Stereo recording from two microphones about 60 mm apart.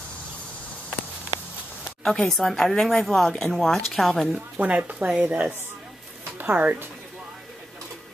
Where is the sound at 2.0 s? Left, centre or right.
Centre.